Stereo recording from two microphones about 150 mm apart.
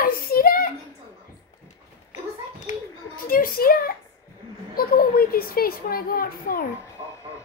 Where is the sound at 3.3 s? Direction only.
75° left (ahead or behind).